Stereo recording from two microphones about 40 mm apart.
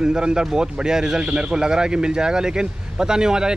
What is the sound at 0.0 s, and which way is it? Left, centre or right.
A man's voice, centre.